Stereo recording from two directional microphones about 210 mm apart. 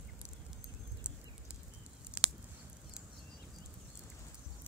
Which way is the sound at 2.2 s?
5° right (ahead or behind).